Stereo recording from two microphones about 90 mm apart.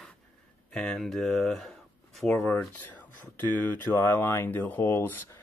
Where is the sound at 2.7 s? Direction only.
20° left (ahead or behind).